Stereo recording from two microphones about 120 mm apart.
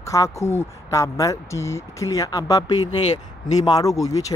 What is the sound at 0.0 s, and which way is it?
Speech, 25° left (ahead or behind).